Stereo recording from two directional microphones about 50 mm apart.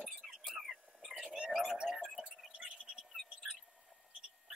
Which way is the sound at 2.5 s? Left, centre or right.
Right.